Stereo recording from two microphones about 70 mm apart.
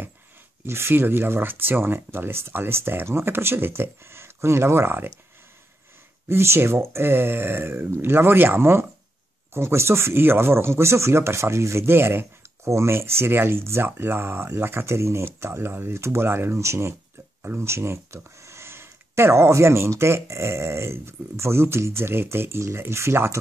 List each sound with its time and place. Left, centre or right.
0.7 s speech: right
6.2 s speech: right